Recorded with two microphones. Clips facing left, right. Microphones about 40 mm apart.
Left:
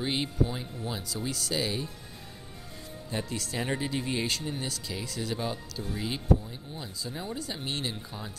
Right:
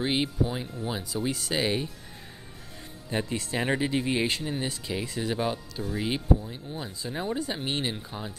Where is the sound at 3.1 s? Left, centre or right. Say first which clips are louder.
Right 4 dB; right.